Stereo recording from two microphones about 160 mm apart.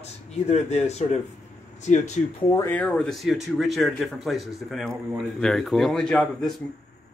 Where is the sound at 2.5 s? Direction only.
20° left (ahead or behind).